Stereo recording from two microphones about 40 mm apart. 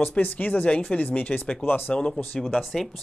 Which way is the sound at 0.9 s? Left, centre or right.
Left.